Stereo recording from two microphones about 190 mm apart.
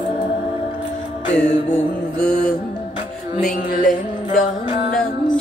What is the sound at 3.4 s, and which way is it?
Music, 45° left (ahead or behind).